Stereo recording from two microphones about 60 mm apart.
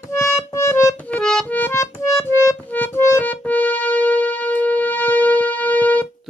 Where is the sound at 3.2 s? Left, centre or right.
Left.